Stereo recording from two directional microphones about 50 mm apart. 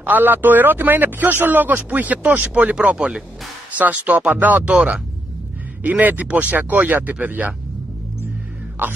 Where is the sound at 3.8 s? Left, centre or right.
Right.